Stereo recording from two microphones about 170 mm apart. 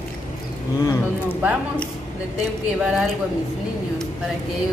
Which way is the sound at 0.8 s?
15° left (ahead or behind).